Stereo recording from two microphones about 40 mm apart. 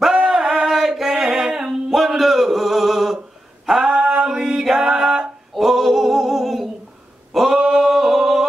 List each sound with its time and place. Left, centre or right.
0.3 s music: centre
3.6 s singing: centre
3.9 s male singing: right
4.3 s a sound: centre
7.3 s singing: centre